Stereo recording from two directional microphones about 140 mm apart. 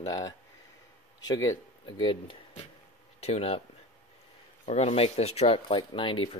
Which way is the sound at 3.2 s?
50° left (ahead or behind).